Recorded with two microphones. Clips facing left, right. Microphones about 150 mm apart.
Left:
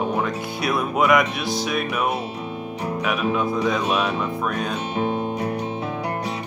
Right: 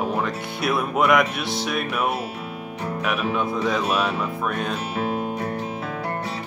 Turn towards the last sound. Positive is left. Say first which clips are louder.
# left 2 dB
turn(degrees=20)  # may be behind; listen again after turning